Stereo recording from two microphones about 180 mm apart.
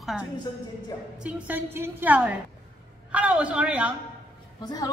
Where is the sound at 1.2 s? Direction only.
10° right (ahead or behind).